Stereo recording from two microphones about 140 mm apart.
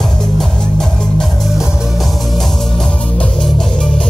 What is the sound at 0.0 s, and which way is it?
Music, 5° left (ahead or behind).